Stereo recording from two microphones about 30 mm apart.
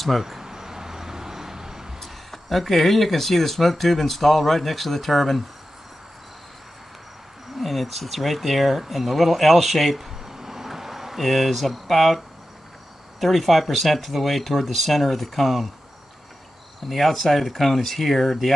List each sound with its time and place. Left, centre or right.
0.2 s a sound: centre
2.0 s speech: centre
7.5 s speech: centre
10.2 s a sound: centre
13.2 s speech: centre
16.8 s speech: centre